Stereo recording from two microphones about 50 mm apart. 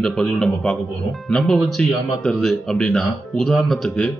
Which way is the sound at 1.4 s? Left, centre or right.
Centre.